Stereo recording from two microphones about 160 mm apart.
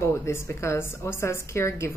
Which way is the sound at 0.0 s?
15° left (ahead or behind).